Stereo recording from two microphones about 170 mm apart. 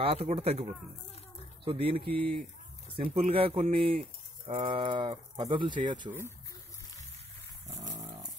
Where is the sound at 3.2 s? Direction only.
35° right (ahead or behind).